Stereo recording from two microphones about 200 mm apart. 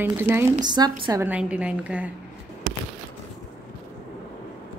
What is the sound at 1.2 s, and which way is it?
Speech, 5° right (ahead or behind).